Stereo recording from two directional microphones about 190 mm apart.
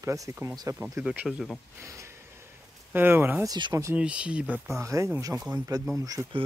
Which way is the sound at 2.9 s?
10° right (ahead or behind).